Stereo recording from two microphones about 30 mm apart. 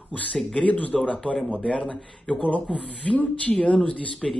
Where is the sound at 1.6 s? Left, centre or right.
Left.